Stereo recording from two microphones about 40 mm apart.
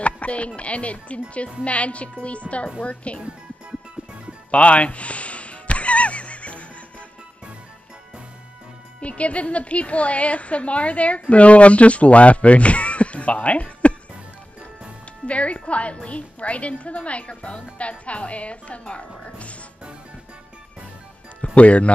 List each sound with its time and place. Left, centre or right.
0.0 s music: left
0.6 s a woman's voice: left
4.5 s music: left
9.0 s a woman's voice: left
15.2 s a woman's voice: left
21.5 s a woman's voice: left